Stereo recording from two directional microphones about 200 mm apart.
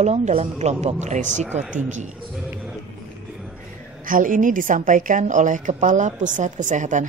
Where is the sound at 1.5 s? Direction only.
10° right (ahead or behind).